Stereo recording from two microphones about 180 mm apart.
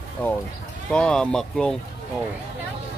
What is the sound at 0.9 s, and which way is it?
Speech, 5° left (ahead or behind).